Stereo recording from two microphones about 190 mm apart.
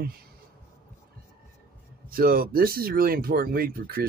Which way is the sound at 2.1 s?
50° right (ahead or behind).